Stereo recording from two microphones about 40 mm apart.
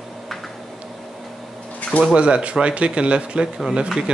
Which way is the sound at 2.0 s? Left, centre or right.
Right.